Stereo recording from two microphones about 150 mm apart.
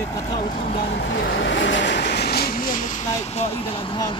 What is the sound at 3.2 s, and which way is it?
Speech, 45° left (ahead or behind).